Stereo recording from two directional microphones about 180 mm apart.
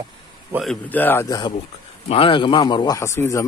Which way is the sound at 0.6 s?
10° left (ahead or behind).